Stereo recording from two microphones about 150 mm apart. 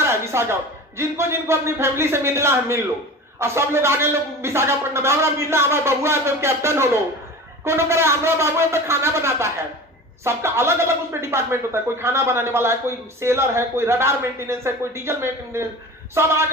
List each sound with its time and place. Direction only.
0.0 s speech: 20° right (ahead or behind)